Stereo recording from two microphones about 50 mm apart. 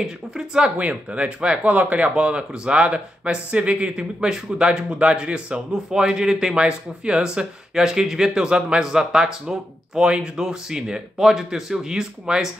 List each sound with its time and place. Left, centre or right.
0.0 s speech: centre
0.7 s speech: right